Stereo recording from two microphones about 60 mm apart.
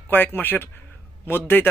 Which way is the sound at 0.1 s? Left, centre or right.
Left.